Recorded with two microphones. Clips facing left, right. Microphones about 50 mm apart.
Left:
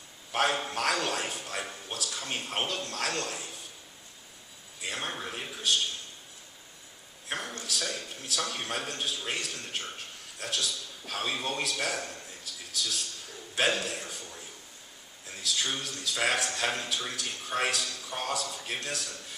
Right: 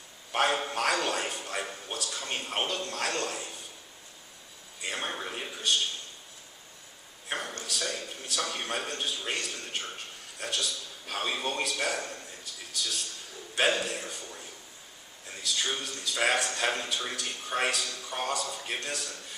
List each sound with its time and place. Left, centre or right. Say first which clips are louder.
0.3 s a man's voice: right 1 dB; centre
4.7 s a man's voice: right 1 dB; centre
7.2 s a man's voice: right 1 dB; centre